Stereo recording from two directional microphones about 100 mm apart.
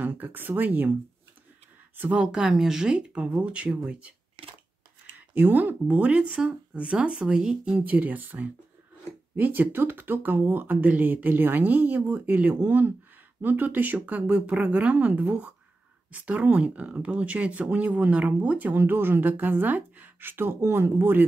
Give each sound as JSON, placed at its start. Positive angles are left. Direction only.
{"t": 0.0, "sound": "speech", "side_deg": -15}
{"t": 2.0, "sound": "speech", "side_deg": -15}
{"t": 4.4, "sound": "scissors", "side_deg": -65}
{"t": 5.3, "sound": "speech", "side_deg": -15}